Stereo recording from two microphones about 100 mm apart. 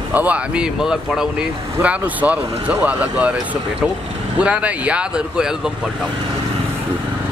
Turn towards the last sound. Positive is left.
turn(degrees=-5)  # may be behind; listen again after turning